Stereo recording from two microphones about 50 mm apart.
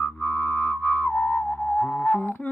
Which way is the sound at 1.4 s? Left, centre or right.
Left.